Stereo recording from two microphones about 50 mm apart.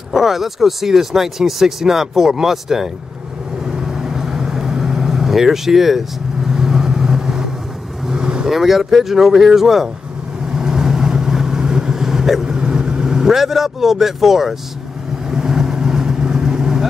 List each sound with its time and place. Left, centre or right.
0.1 s speech: centre
3.6 s vehicle: centre
8.5 s speech: centre
10.5 s vehicle: centre